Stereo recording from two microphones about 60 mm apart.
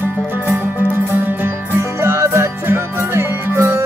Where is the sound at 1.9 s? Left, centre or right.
Right.